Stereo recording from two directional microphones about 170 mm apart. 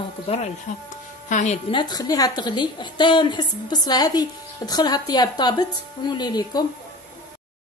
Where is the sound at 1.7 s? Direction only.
25° left (ahead or behind).